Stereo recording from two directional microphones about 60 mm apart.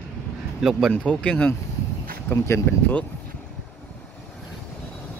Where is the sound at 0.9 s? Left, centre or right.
Left.